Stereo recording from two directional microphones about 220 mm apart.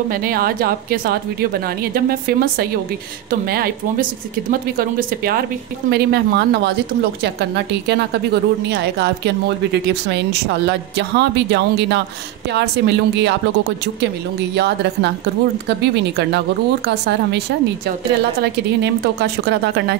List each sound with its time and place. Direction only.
0.1 s a woman's voice: 40° right (ahead or behind)
14.5 s speech: 50° right (ahead or behind)